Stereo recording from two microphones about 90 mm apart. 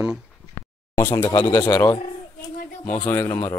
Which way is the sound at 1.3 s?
60° left (ahead or behind).